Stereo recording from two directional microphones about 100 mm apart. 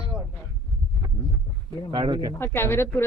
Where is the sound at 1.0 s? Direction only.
40° right (ahead or behind).